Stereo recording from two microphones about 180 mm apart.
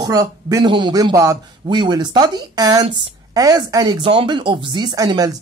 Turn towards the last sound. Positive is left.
turn(degrees=-20)  # may be behind; listen again after turning